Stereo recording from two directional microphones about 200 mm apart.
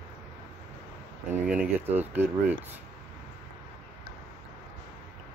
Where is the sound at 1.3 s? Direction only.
10° right (ahead or behind).